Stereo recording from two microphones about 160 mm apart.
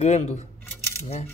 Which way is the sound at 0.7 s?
15° left (ahead or behind).